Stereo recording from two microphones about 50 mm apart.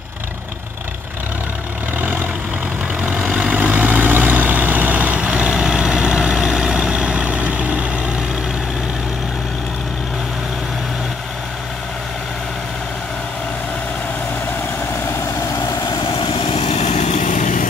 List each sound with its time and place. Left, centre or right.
2.0 s vehicle: right
3.5 s vehicle: right